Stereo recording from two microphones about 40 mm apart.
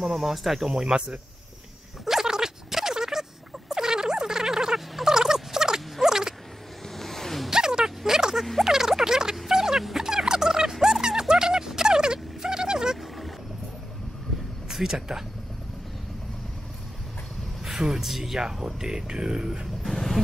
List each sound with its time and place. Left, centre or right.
0.0 s speech: centre
0.7 s speech: centre
2.0 s gargling: centre
4.7 s a sound: centre
5.1 s rodents: centre
7.0 s a sound: centre
7.4 s a sound: centre
8.6 s music: centre
9.8 s a sound: centre
14.7 s speech: centre
17.6 s speech: centre
19.8 s vehicle: centre